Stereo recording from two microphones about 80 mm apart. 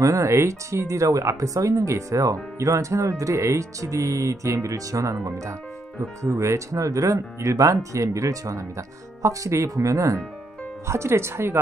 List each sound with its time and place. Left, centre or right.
0.0 s speech: right